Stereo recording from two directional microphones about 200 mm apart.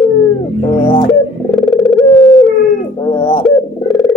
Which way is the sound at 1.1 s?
Centre (ahead or behind).